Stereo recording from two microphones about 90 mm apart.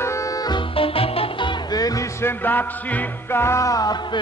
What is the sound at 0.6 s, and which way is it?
Music, 90° left.